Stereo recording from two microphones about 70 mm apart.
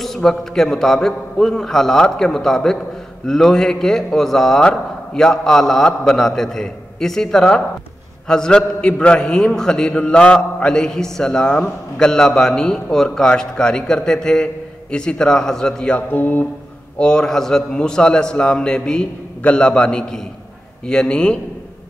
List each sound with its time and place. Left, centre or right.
0.0 s a man's voice: centre
16.1 s speech: left
17.0 s a man's voice: centre